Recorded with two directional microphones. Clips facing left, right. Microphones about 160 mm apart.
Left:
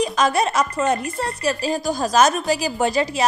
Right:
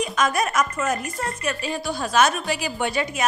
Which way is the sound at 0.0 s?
35° left (ahead or behind).